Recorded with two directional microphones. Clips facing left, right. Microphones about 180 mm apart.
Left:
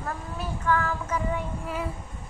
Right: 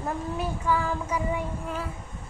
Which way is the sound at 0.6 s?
10° right (ahead or behind).